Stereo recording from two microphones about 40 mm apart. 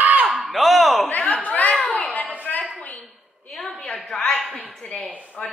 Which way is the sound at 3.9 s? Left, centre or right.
Centre.